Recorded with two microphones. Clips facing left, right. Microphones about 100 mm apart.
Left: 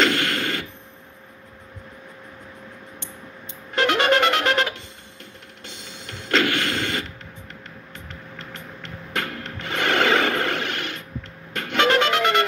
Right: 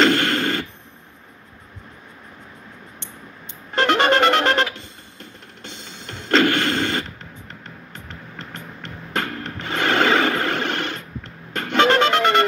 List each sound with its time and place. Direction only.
0.0 s a sound: 35° right (ahead or behind)
3.7 s music: 30° right (ahead or behind)
6.2 s mechanisms: 35° right (ahead or behind)
9.1 s music: 30° right (ahead or behind)